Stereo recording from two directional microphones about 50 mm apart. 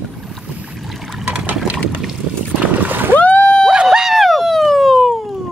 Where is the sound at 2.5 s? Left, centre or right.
Right.